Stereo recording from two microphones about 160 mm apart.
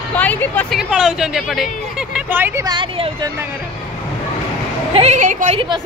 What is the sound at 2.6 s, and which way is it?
Speech, 30° right (ahead or behind).